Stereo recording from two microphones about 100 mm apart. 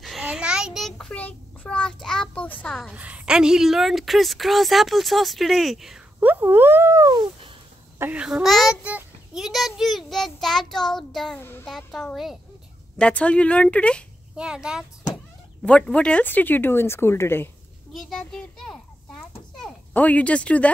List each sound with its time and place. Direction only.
0.0 s a sound: 5° right (ahead or behind)
2.4 s speech: 15° left (ahead or behind)
2.9 s a woman's voice: 15° right (ahead or behind)
6.1 s a sound: 20° right (ahead or behind)
8.0 s a woman's voice: 10° right (ahead or behind)
11.3 s speech: 20° left (ahead or behind)
11.6 s a woman's voice: 5° left (ahead or behind)
12.9 s speech: 15° left (ahead or behind)
14.3 s a child's voice: 10° right (ahead or behind)
15.6 s speech: 10° left (ahead or behind)
17.9 s a woman's voice: 5° left (ahead or behind)
19.9 s speech: 15° left (ahead or behind)